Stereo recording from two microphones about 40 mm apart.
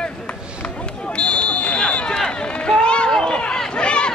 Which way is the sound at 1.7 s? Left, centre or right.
Left.